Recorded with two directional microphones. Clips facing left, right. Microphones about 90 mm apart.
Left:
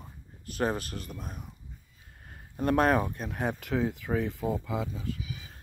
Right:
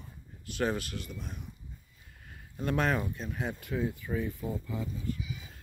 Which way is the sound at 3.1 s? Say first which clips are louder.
Left 4 dB; 55° left (ahead or behind).